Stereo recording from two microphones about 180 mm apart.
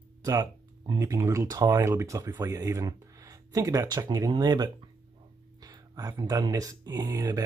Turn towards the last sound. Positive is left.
turn(degrees=-20)  # may be behind; listen again after turning